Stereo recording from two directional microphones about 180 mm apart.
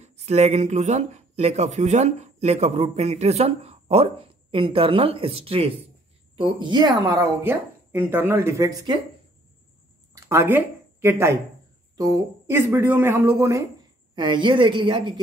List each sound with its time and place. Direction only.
0.0 s speech: 35° right (ahead or behind); by 9.0 s 20° right (ahead or behind)
10.1 s a woman's voice: 15° right (ahead or behind)